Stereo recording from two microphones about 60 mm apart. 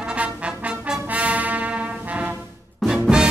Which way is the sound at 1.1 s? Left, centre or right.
Right.